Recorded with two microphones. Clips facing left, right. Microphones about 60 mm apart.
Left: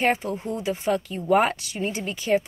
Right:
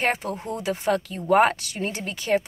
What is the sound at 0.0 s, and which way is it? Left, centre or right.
Speech, right.